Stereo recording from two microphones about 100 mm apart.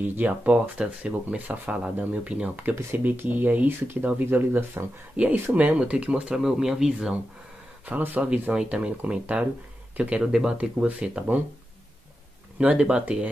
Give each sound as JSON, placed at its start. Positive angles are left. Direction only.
{"t": 0.1, "sound": "speech", "side_deg": -15}
{"t": 12.5, "sound": "speech", "side_deg": -10}